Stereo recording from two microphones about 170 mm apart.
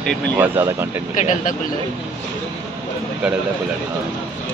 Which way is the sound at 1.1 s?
45° left (ahead or behind).